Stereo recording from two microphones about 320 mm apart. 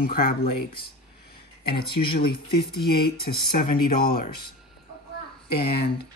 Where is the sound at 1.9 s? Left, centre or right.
Centre.